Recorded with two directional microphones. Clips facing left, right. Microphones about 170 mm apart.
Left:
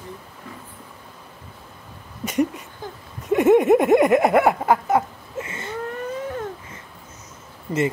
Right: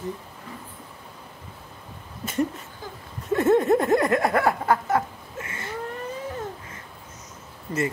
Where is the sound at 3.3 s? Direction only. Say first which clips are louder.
Left 4 dB; 15° left (ahead or behind).